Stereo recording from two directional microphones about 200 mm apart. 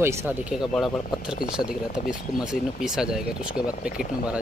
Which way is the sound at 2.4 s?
5° right (ahead or behind).